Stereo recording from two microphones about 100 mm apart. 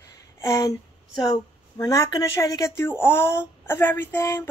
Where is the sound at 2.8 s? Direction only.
25° left (ahead or behind).